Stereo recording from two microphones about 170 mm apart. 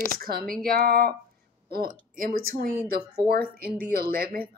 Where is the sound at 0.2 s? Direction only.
60° right (ahead or behind).